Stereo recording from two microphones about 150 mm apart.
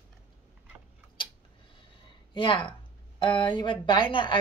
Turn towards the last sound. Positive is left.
turn(degrees=35)  # may be behind; listen again after turning